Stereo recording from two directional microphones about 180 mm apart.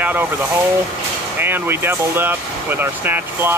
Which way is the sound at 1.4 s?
10° right (ahead or behind).